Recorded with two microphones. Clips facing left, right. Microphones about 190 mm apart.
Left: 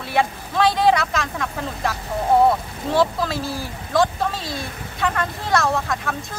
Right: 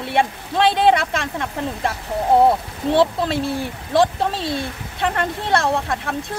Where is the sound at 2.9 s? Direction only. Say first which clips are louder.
Right 2 dB; 25° right (ahead or behind).